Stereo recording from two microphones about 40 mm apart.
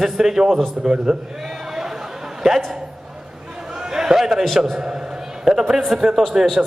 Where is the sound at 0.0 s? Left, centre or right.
Centre.